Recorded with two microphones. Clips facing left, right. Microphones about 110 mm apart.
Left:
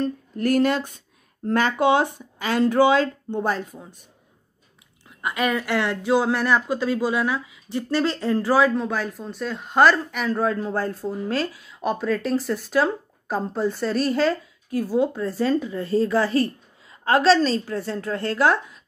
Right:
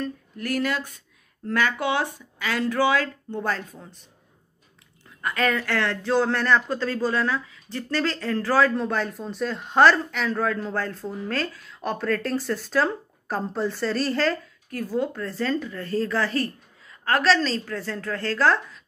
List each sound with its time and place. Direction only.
0.4 s speech: 30° left (ahead or behind)
5.2 s speech: 15° left (ahead or behind)
8.7 s speech: 5° left (ahead or behind)
10.3 s speech: 20° left (ahead or behind)